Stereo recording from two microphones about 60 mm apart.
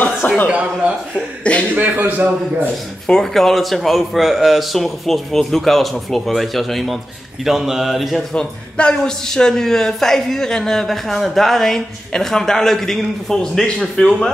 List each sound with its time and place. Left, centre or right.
0.5 s a man's voice: right
1.5 s speech: centre
1.8 s a man's voice: right
3.1 s speech: centre
8.4 s a man's voice: centre